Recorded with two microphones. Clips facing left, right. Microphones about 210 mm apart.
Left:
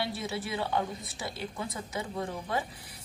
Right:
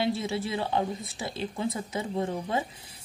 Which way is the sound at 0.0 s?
25° right (ahead or behind).